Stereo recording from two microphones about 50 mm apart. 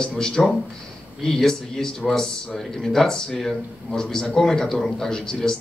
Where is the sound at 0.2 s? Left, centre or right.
Centre.